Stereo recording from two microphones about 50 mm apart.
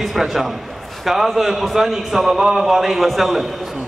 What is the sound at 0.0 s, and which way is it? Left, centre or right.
A man's voice, centre.